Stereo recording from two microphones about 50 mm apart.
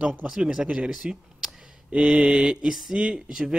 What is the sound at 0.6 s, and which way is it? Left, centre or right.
Speech, right.